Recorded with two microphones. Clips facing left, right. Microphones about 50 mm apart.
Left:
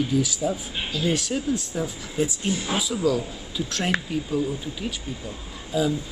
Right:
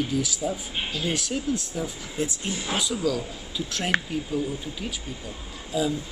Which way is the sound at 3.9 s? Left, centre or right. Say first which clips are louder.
Right 6 dB; right.